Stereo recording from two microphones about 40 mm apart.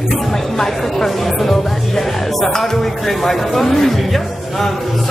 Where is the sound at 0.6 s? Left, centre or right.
Centre.